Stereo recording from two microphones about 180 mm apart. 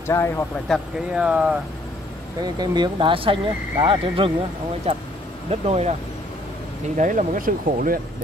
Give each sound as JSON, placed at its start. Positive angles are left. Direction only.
{"t": 0.1, "sound": "speech", "side_deg": 15}
{"t": 0.7, "sound": "speech", "side_deg": -5}
{"t": 2.6, "sound": "speech", "side_deg": -25}
{"t": 7.0, "sound": "speech", "side_deg": -45}